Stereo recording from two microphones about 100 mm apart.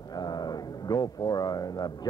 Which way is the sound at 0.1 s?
45° left (ahead or behind).